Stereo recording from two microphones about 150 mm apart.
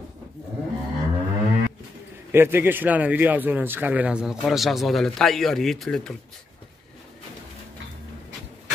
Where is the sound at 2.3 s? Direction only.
15° right (ahead or behind); by 6.1 s 5° left (ahead or behind).